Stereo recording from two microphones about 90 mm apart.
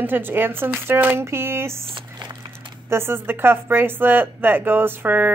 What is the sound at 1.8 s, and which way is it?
Squish, 60° right (ahead or behind).